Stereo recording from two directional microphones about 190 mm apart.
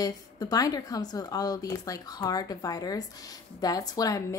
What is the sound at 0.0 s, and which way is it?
A woman's voice, 20° left (ahead or behind).